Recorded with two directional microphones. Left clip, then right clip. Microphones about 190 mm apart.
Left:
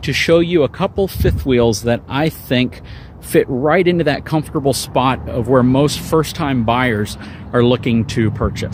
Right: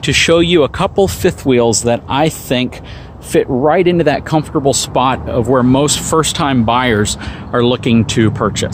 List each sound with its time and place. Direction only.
0.0 s speech: centre (ahead or behind)
1.4 s speech: centre (ahead or behind)